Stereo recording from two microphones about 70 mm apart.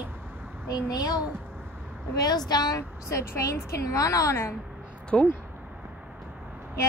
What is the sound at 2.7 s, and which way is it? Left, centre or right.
A woman's voice, left.